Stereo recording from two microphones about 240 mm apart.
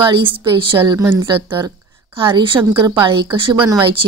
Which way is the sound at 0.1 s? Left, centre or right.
Centre.